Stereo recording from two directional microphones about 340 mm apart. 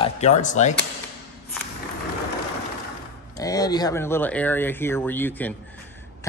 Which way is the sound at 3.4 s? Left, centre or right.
Centre.